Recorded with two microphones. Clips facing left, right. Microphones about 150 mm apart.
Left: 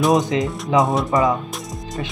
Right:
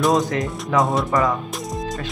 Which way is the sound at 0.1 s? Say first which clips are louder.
Left 2 dB; 20° left (ahead or behind).